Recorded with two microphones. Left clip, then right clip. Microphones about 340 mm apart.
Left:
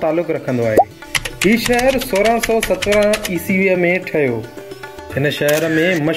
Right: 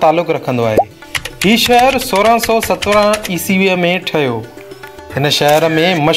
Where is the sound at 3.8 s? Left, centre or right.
Right.